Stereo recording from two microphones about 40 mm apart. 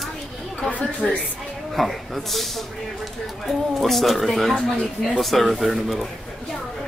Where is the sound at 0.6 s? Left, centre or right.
Left.